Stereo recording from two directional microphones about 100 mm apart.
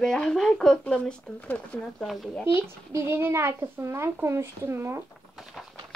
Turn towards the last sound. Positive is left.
turn(degrees=-25)  # may be behind; listen again after turning